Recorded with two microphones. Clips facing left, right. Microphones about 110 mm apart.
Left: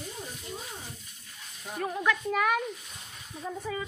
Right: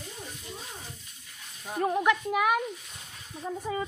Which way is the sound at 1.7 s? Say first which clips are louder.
Right 6 dB; 25° right (ahead or behind).